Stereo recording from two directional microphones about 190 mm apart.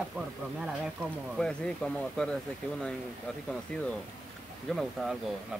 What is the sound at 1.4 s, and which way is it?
Speech, 5° left (ahead or behind).